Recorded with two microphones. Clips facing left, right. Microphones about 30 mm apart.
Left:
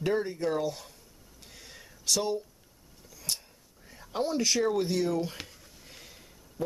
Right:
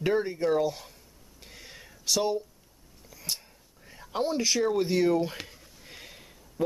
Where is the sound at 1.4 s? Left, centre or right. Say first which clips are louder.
Right 3 dB; centre.